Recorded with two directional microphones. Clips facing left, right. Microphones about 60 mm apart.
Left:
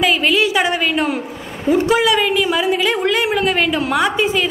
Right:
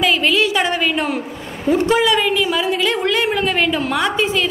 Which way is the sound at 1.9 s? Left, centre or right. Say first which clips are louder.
Left 1 dB; centre.